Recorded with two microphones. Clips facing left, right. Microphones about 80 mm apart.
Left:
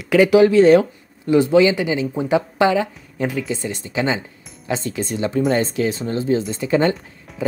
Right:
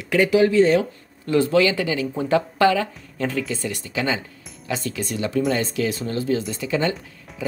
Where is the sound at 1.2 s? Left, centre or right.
Centre.